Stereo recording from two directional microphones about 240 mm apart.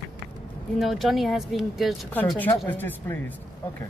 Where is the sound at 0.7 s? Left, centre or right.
Centre.